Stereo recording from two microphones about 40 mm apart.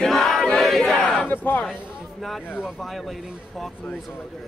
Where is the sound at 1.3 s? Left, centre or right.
Left.